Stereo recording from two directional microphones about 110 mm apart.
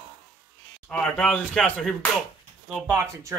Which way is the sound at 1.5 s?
5° left (ahead or behind).